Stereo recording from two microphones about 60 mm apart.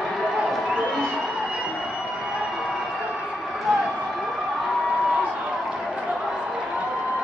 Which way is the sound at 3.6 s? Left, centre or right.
Centre.